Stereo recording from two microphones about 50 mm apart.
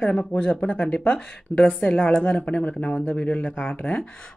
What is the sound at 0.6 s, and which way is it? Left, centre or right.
A woman's voice, left.